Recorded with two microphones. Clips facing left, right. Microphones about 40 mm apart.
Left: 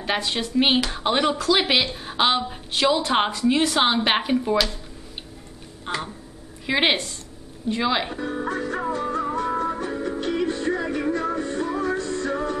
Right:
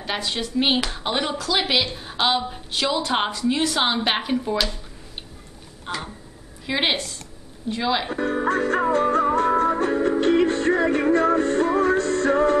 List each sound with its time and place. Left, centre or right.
0.0 s speech: centre
5.9 s speech: centre
8.2 s music: right